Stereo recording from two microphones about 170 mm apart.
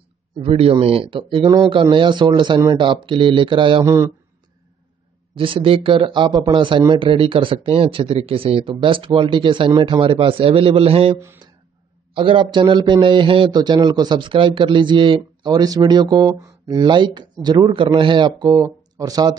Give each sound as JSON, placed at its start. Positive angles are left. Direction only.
{"t": 0.4, "sound": "a man's voice", "side_deg": -35}
{"t": 3.8, "sound": "a man's voice", "side_deg": -20}
{"t": 5.3, "sound": "speech", "side_deg": -30}
{"t": 11.1, "sound": "speech", "side_deg": -15}
{"t": 12.1, "sound": "a man's voice", "side_deg": -30}